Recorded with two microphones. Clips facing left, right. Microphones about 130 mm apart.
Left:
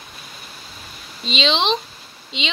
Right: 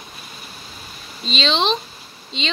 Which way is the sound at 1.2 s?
15° left (ahead or behind).